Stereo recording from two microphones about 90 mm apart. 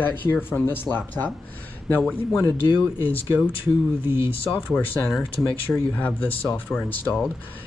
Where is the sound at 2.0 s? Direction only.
10° left (ahead or behind).